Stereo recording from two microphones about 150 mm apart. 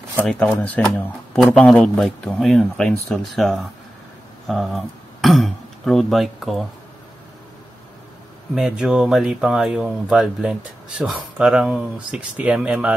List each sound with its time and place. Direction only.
0.2 s speech: 10° left (ahead or behind)
8.5 s speech: 5° right (ahead or behind)